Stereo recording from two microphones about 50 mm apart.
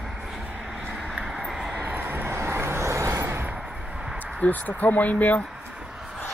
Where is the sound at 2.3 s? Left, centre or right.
Right.